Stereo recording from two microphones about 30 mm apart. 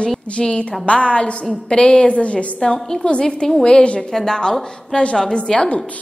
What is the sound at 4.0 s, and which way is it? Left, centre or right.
A woman's voice, centre.